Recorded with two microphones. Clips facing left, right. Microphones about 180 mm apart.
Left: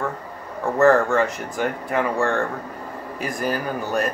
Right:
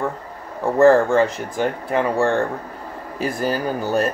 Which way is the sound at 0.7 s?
30° right (ahead or behind).